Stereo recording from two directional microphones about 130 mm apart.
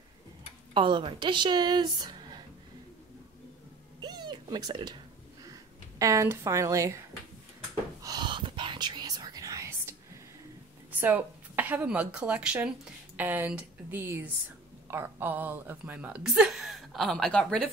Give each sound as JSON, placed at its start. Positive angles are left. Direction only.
{"t": 0.7, "sound": "speech", "side_deg": -40}
{"t": 4.0, "sound": "cat", "side_deg": -35}
{"t": 5.4, "sound": "a sound", "side_deg": -30}
{"t": 8.0, "sound": "whispering", "side_deg": -35}
{"t": 10.9, "sound": "speech", "side_deg": -15}